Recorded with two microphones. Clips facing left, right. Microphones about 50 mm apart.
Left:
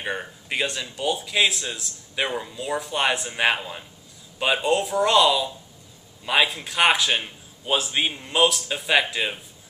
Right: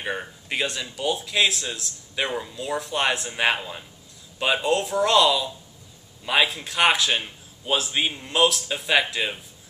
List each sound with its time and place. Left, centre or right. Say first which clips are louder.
0.0 s speech: even; centre